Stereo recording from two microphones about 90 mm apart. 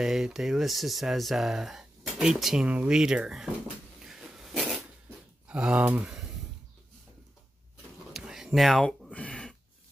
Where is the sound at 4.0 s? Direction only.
5° right (ahead or behind).